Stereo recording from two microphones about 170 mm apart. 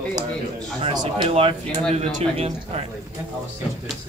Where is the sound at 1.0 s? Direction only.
30° right (ahead or behind).